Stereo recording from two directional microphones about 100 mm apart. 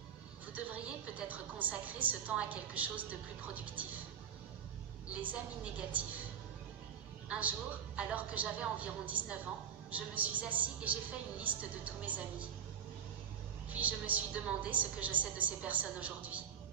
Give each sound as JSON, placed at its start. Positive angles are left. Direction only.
{"t": 0.5, "sound": "a man's voice", "side_deg": -15}
{"t": 5.1, "sound": "a man's voice", "side_deg": -15}
{"t": 7.2, "sound": "a man's voice", "side_deg": -15}
{"t": 13.7, "sound": "a man's voice", "side_deg": -15}